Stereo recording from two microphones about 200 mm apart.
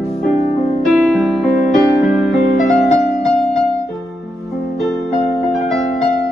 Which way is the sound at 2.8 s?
Centre (ahead or behind).